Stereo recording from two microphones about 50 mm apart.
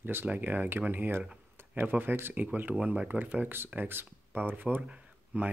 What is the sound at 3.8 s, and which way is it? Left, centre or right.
Speech, right.